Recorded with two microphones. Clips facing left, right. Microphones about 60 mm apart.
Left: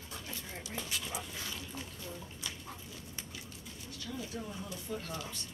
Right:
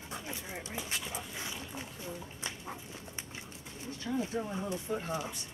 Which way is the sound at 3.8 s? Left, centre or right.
Right.